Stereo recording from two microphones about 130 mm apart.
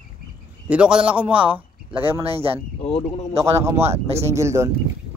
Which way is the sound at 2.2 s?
50° right (ahead or behind).